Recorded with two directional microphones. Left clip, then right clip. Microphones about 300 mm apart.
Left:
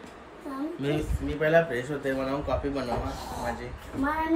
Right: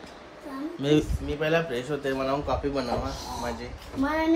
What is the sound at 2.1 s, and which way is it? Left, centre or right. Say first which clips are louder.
Speech: right 3 dB; centre.